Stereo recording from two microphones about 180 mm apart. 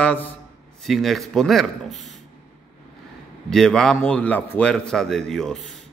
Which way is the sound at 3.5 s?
Centre (ahead or behind).